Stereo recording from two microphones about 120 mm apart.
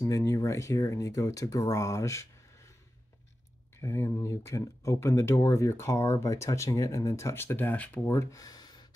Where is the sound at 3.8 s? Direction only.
25° left (ahead or behind).